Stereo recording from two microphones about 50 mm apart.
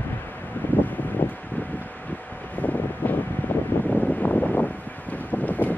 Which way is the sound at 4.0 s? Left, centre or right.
Left.